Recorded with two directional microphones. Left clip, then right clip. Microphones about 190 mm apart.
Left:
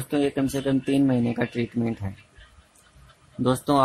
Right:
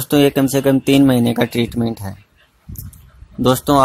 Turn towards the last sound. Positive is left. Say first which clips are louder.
# right 8 dB
turn(degrees=-35)  # may be behind; listen again after turning